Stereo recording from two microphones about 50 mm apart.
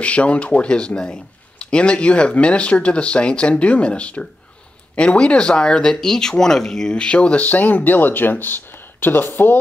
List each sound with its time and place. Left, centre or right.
0.0 s speech: left